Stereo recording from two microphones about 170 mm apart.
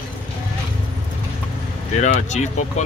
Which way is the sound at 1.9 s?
45° left (ahead or behind).